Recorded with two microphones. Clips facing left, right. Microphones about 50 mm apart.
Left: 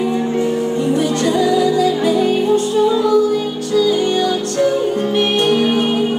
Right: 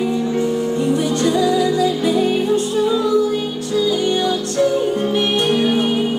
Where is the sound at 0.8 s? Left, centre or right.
Left.